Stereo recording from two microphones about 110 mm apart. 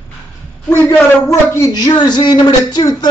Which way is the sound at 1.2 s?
25° left (ahead or behind).